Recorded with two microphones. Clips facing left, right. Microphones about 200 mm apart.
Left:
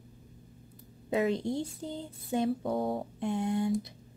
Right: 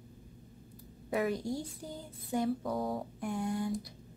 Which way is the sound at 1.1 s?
25° left (ahead or behind).